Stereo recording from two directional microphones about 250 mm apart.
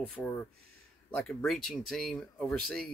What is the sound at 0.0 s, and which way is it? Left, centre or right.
Speech, centre.